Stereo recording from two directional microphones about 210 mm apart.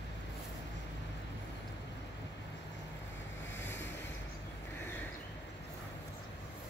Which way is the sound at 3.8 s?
60° left (ahead or behind).